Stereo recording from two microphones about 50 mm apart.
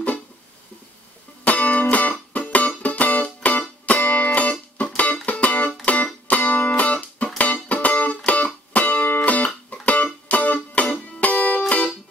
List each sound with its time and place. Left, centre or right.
1.4 s music: left